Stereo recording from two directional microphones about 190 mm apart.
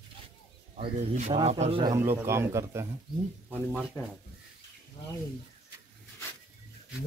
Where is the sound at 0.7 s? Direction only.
40° right (ahead or behind).